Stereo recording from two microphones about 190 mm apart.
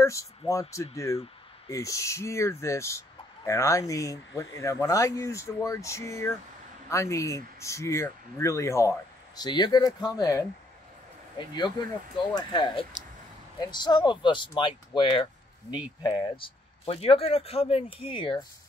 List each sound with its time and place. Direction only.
0.0 s speech: 15° left (ahead or behind)